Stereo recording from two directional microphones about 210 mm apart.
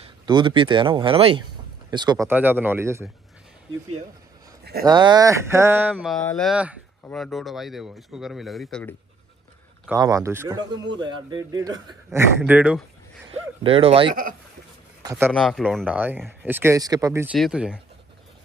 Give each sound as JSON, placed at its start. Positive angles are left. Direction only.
{"t": 0.0, "sound": "a man's voice", "side_deg": -20}
{"t": 4.8, "sound": "a man's voice", "side_deg": -20}
{"t": 6.1, "sound": "speech", "side_deg": 0}
{"t": 9.8, "sound": "a man's voice", "side_deg": -15}
{"t": 13.3, "sound": "speech", "side_deg": -25}
{"t": 15.0, "sound": "a man's voice", "side_deg": -10}
{"t": 17.4, "sound": "speech", "side_deg": -5}